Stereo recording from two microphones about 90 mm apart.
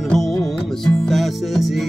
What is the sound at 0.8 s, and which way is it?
Music, centre (ahead or behind).